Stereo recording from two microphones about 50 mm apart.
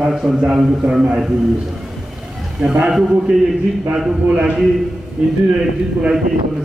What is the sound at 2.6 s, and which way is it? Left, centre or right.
A man's voice, centre.